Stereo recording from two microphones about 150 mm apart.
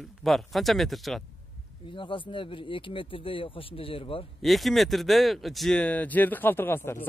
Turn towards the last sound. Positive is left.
turn(degrees=15)  # may be behind; listen again after turning